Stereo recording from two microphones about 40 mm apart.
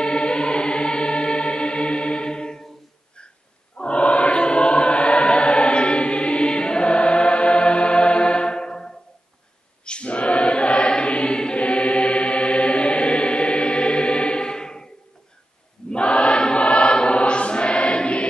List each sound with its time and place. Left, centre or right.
0.0 s music: left
3.7 s choir: left
9.8 s choir: left
15.9 s choir: left